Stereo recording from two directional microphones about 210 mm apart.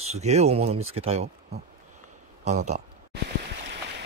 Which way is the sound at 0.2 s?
30° right (ahead or behind).